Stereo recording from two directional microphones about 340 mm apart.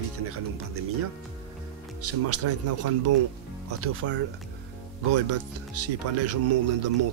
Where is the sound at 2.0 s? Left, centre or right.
Right.